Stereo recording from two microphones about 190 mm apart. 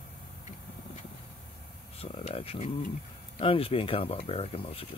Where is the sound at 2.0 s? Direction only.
30° left (ahead or behind).